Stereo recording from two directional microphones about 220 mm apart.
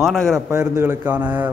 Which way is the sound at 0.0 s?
Centre (ahead or behind).